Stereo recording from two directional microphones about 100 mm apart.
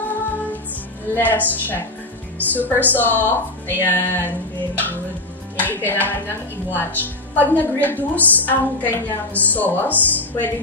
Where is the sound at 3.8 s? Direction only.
20° left (ahead or behind).